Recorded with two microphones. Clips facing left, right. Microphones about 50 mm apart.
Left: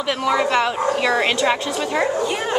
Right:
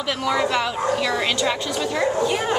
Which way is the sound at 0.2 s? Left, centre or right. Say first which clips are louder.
Left 3 dB; centre.